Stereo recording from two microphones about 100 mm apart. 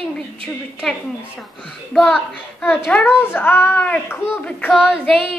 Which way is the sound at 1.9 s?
5° left (ahead or behind).